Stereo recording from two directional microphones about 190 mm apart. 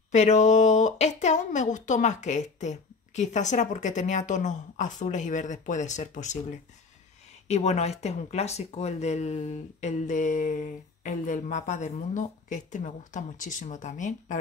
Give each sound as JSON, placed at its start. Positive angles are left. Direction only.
{"t": 0.1, "sound": "speech", "side_deg": 40}
{"t": 7.4, "sound": "speech", "side_deg": 35}